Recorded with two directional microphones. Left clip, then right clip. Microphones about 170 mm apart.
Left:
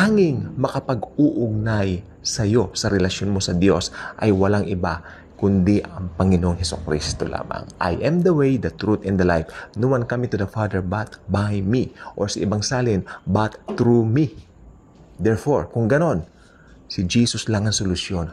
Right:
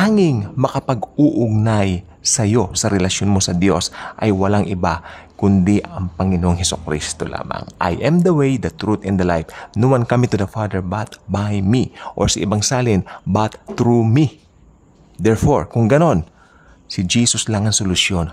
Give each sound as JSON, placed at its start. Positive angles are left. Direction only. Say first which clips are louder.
{"t": 0.0, "sound": "speech", "louder": "right 2 dB", "side_deg": -15}
{"t": 5.6, "sound": "speech", "louder": "right 2 dB", "side_deg": -15}
{"t": 6.1, "sound": "speech", "louder": "left 1 dB", "side_deg": 5}
{"t": 6.4, "sound": "speech", "louder": "right 5 dB", "side_deg": -20}
{"t": 10.5, "sound": "speech", "louder": "right 2 dB", "side_deg": -10}
{"t": 15.2, "sound": "speech", "louder": "right 4 dB", "side_deg": -25}
{"t": 17.8, "sound": "speech", "louder": "right 8 dB", "side_deg": -30}